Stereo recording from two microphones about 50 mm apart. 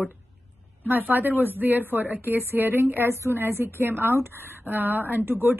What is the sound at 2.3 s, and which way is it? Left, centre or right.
Speech, right.